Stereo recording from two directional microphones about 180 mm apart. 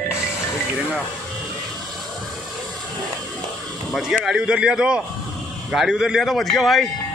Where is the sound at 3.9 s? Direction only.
Centre (ahead or behind).